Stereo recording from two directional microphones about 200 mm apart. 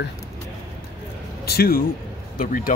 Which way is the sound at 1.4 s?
50° left (ahead or behind).